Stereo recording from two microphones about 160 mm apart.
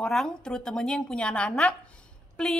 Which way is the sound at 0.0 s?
5° left (ahead or behind).